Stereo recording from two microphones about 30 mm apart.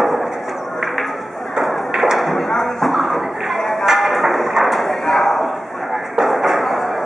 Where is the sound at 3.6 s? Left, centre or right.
Centre.